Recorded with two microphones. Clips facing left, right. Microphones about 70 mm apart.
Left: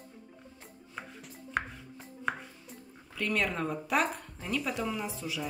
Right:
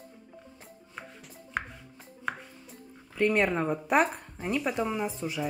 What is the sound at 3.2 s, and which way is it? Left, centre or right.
Speech, right.